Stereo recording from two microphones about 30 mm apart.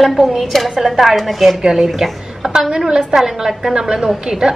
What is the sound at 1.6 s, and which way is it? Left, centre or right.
A woman's voice, centre.